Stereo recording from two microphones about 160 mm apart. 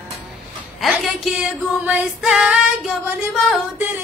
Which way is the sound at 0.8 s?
Centre (ahead or behind).